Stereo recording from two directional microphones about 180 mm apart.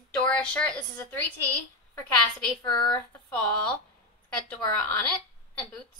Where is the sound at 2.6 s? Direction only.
25° left (ahead or behind).